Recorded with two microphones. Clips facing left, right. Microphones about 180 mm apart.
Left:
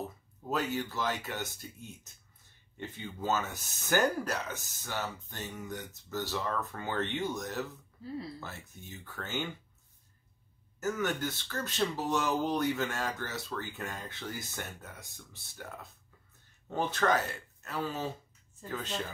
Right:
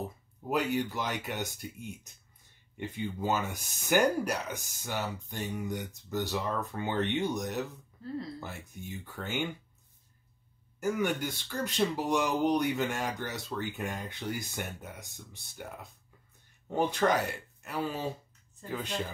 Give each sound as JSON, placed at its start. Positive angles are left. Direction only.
{"t": 0.5, "sound": "speech", "side_deg": -15}
{"t": 10.8, "sound": "speech", "side_deg": -15}
{"t": 16.6, "sound": "speech", "side_deg": -15}